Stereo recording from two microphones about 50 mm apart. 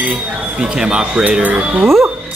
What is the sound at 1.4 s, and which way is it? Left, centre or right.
Speech, right.